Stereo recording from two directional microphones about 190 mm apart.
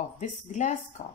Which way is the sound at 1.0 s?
50° left (ahead or behind).